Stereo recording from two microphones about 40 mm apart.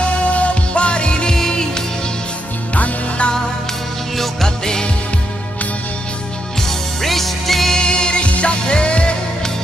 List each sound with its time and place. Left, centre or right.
0.3 s music: left
1.3 s music: centre
2.7 s music: left
4.2 s music: centre
7.0 s music: centre
7.7 s music: left